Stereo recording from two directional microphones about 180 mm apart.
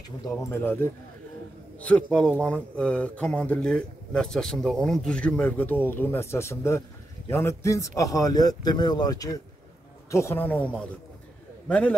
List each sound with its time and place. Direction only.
0.5 s a man's voice: 10° left (ahead or behind)